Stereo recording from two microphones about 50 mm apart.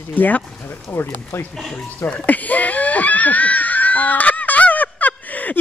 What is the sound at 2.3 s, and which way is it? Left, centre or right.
Speech, left.